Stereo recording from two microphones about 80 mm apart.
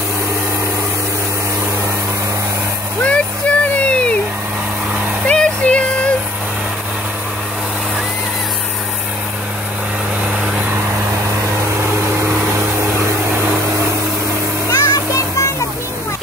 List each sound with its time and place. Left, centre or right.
3.0 s a sound: centre
5.2 s music: centre
12.4 s vacuum cleaner: right
14.7 s music: left